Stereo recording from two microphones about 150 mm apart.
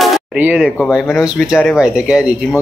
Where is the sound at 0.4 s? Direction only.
5° right (ahead or behind).